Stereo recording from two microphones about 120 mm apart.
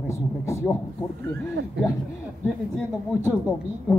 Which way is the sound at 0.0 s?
25° left (ahead or behind).